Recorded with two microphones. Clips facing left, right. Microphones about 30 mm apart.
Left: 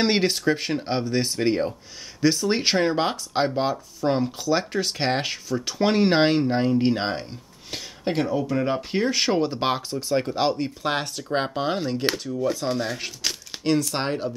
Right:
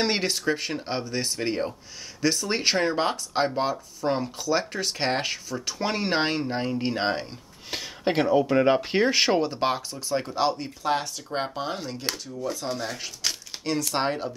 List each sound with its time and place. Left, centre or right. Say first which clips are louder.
0.0 s speech: left 4 dB; centre
7.0 s speech: right 1 dB; centre
9.4 s speech: left 2 dB; centre
10.8 s speech: even; left
13.2 s a sound: left 1 dB; centre
13.9 s speech: even; centre